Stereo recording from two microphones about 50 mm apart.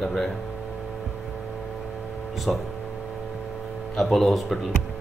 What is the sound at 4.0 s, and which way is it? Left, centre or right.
Speech, centre.